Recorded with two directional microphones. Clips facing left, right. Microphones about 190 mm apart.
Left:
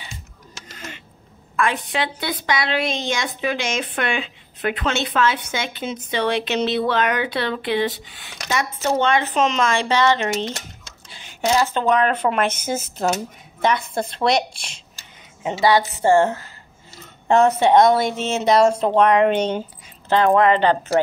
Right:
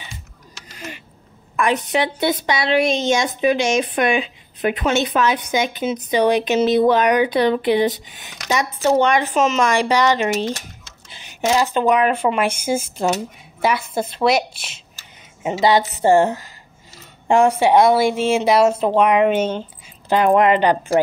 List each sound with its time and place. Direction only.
1.6 s a woman's voice: 20° right (ahead or behind); by 14.8 s 5° right (ahead or behind)
15.4 s speech: 15° right (ahead or behind)